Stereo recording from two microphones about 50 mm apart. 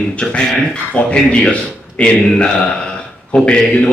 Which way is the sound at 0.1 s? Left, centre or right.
Left.